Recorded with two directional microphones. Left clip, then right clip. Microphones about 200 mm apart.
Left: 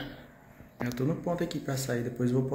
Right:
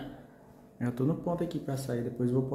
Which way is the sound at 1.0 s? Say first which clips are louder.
Left 1 dB; 5° right (ahead or behind).